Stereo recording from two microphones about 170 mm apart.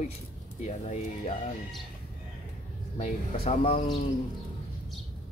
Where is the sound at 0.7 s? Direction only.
40° left (ahead or behind).